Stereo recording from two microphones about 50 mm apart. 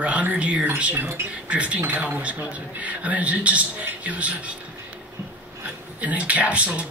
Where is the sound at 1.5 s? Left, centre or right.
Right.